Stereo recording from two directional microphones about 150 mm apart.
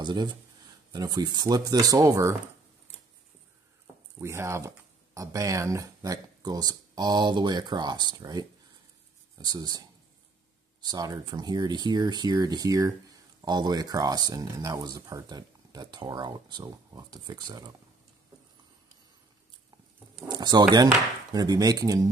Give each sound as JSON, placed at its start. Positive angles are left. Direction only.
{"t": 0.0, "sound": "speech", "side_deg": -30}
{"t": 3.8, "sound": "speech", "side_deg": -15}
{"t": 20.2, "sound": "speech", "side_deg": -25}